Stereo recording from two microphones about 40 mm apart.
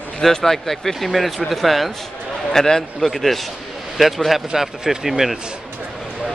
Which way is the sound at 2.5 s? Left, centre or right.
Centre.